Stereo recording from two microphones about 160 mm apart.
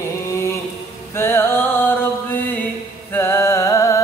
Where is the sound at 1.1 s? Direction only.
15° left (ahead or behind).